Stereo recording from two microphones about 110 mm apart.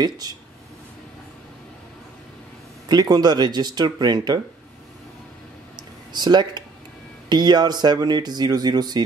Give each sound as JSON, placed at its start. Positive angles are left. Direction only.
{"t": 0.0, "sound": "speech", "side_deg": -35}
{"t": 2.9, "sound": "speech", "side_deg": -40}
{"t": 6.1, "sound": "speech", "side_deg": -40}